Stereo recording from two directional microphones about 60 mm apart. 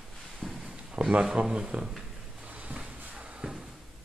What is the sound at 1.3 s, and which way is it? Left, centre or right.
Speech, centre.